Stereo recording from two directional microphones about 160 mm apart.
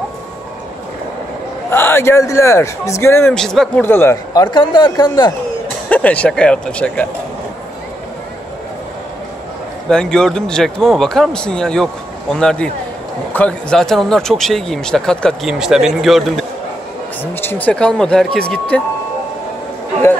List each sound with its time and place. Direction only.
1.7 s speech: 15° left (ahead or behind)
3.3 s speech: 5° left (ahead or behind)
3.8 s a man's voice: 15° left (ahead or behind)
5.9 s speech: 10° left (ahead or behind)
9.8 s speech: 5° left (ahead or behind)
17.2 s speech: 15° left (ahead or behind)